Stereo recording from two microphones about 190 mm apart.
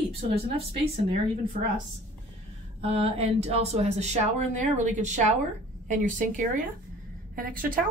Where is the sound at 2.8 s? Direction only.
30° right (ahead or behind).